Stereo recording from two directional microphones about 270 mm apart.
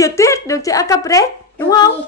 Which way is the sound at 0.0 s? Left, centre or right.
Centre.